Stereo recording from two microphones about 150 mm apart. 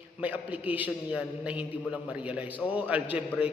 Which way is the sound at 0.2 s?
10° right (ahead or behind).